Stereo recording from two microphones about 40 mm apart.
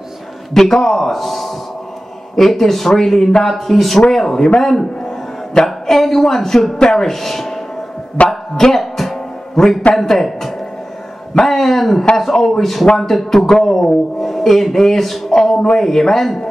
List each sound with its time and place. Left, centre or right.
0.6 s a man's voice: centre
8.3 s music: centre
9.6 s speech: centre